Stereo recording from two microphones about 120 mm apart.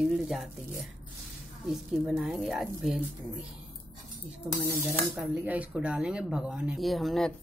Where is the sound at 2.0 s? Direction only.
5° right (ahead or behind).